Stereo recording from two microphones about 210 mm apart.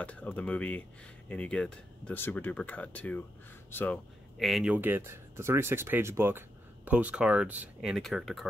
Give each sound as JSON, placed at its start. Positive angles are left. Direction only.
{"t": 0.0, "sound": "speech", "side_deg": 5}